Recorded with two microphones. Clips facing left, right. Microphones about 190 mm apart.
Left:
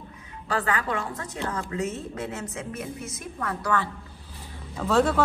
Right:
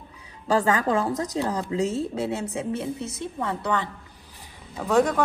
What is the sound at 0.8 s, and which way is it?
A woman's voice, 35° right (ahead or behind).